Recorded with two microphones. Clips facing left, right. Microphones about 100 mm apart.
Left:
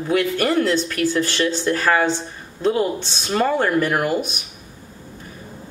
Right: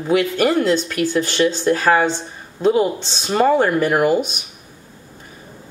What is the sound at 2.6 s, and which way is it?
Speech, 15° right (ahead or behind).